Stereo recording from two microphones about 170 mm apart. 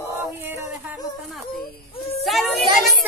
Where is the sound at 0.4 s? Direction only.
10° right (ahead or behind).